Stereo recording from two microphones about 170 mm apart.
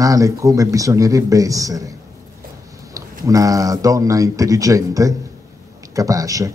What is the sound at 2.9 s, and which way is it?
A man's voice, 20° right (ahead or behind).